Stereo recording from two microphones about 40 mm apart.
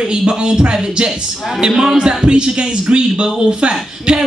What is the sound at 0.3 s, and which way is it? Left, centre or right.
Speech, right.